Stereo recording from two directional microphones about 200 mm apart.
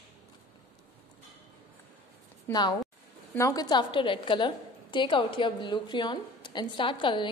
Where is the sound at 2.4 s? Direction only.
20° left (ahead or behind).